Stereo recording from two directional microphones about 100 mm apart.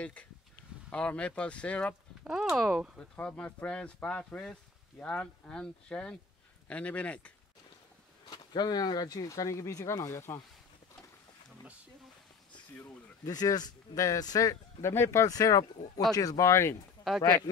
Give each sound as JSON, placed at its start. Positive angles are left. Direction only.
{"t": 0.0, "sound": "speech", "side_deg": 15}
{"t": 2.2, "sound": "speech", "side_deg": -5}
{"t": 3.0, "sound": "speech", "side_deg": 10}
{"t": 8.3, "sound": "speech", "side_deg": 45}
{"t": 13.2, "sound": "speech", "side_deg": 40}
{"t": 14.8, "sound": "speech", "side_deg": 25}